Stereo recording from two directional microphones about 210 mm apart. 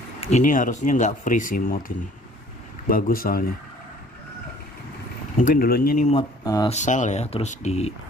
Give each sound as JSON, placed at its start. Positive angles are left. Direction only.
{"t": 0.2, "sound": "speech", "side_deg": 35}
{"t": 5.4, "sound": "speech", "side_deg": 40}
{"t": 6.1, "sound": "speech", "side_deg": 20}
{"t": 6.7, "sound": "speech", "side_deg": 35}